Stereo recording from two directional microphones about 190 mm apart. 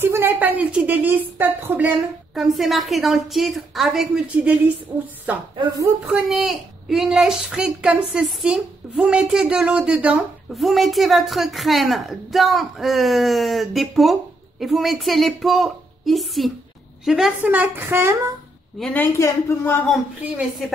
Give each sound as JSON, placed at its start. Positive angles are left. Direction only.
{"t": 0.0, "sound": "a woman's voice", "side_deg": -10}
{"t": 18.8, "sound": "a child's voice", "side_deg": 0}
{"t": 19.1, "sound": "speech", "side_deg": 15}
{"t": 19.9, "sound": "a child's voice", "side_deg": 0}